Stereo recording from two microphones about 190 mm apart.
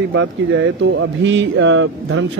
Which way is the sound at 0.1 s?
90° right.